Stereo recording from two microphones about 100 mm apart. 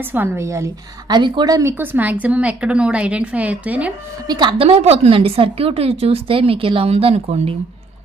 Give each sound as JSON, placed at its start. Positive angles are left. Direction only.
{"t": 0.1, "sound": "a woman's voice", "side_deg": -20}
{"t": 1.0, "sound": "a woman's voice", "side_deg": -50}
{"t": 4.3, "sound": "a woman's voice", "side_deg": -45}
{"t": 4.6, "sound": "a woman's voice", "side_deg": -85}